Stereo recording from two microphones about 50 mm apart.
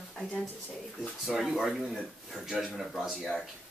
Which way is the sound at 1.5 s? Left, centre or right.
Centre.